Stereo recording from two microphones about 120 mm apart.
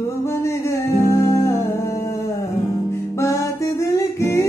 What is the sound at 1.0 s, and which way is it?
Music, 25° left (ahead or behind).